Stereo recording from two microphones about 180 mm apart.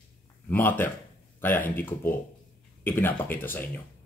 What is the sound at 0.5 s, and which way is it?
Speech, 10° left (ahead or behind).